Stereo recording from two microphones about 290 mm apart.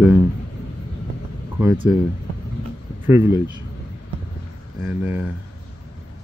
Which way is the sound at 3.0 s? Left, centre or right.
Centre.